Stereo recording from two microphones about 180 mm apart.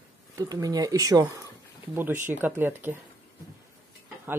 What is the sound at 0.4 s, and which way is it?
Speech, 20° right (ahead or behind).